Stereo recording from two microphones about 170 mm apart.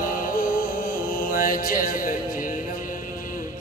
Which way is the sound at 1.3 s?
55° left (ahead or behind).